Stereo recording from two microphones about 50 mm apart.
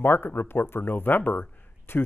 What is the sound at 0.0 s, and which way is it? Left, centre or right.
Speech, left.